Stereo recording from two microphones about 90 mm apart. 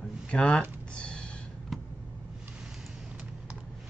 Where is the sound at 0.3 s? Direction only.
10° left (ahead or behind).